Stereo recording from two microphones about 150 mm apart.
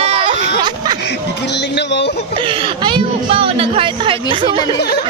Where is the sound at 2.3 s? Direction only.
35° right (ahead or behind).